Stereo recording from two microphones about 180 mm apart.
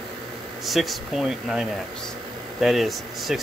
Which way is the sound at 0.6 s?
Centre (ahead or behind).